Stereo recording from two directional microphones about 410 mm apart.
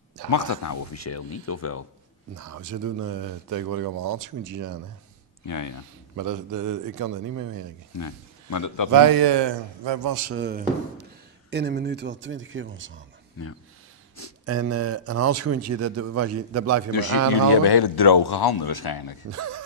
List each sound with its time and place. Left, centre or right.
0.3 s speech: left
2.3 s speech: right
5.5 s speech: left
6.1 s speech: right
8.0 s speech: left
8.9 s a man's voice: right
10.0 s speech: right
10.3 s speech: right
14.4 s speech: right
17.3 s speech: left
19.3 s speech: right